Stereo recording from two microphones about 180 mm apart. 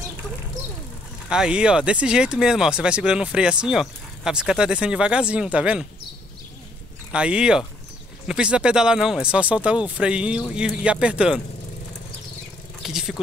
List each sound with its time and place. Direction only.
1.3 s speech: 5° right (ahead or behind)
7.1 s speech: 5° right (ahead or behind)
12.8 s a sound: centre (ahead or behind)